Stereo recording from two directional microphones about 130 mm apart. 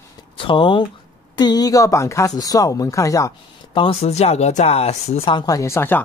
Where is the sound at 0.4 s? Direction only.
40° left (ahead or behind); by 3.3 s 25° left (ahead or behind).